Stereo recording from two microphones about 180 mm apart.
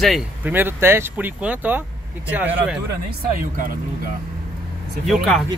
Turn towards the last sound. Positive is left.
turn(degrees=0)  # may be behind; listen again after turning